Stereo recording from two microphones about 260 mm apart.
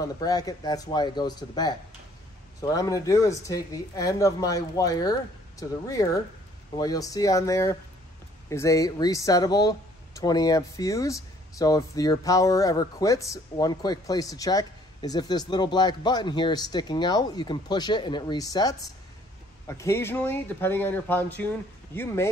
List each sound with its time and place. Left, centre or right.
0.0 s speech: centre